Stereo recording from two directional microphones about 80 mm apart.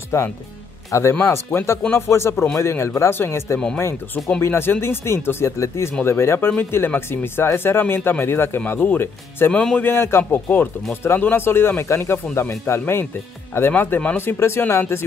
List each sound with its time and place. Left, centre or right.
0.1 s speech: left
9.5 s speech: centre
9.8 s speech: left